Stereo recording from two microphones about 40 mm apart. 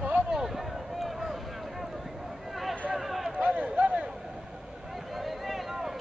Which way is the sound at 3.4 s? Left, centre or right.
Right.